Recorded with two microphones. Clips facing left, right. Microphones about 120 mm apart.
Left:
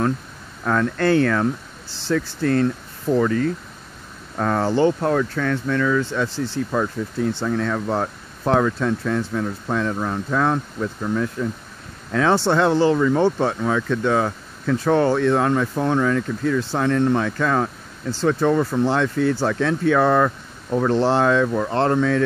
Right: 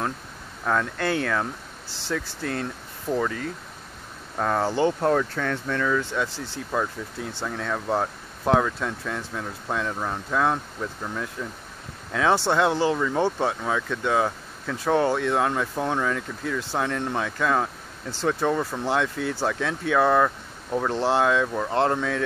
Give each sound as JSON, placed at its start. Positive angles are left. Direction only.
{"t": 0.7, "sound": "speech", "side_deg": -10}
{"t": 5.9, "sound": "speech", "side_deg": -10}